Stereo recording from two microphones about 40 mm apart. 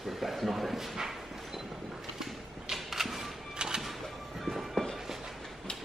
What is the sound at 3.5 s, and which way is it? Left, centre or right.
Music, centre.